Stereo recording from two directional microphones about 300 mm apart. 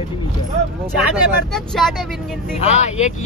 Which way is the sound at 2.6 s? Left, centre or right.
Left.